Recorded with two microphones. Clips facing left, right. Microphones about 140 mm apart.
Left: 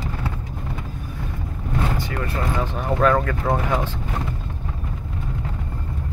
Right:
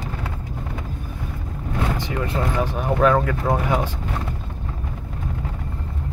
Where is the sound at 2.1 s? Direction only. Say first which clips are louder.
Right 2 dB; 20° right (ahead or behind).